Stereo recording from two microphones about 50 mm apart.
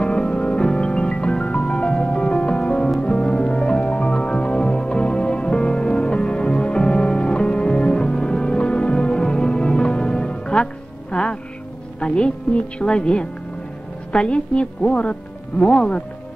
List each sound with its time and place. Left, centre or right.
0.0 s music: left
14.1 s a woman's voice: centre